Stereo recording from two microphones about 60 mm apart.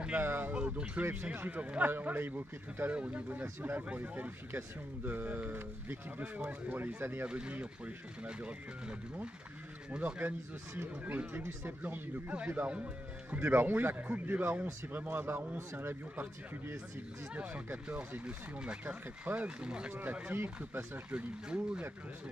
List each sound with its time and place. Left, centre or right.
0.2 s speech: right
0.5 s speech: right
4.5 s speech: right
7.2 s speech: right
11.1 s speech: right
17.3 s speech: right
19.9 s speech: right
21.1 s speech: centre